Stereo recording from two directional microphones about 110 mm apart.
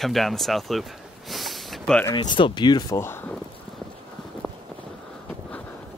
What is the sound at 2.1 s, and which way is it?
Speech, 40° left (ahead or behind).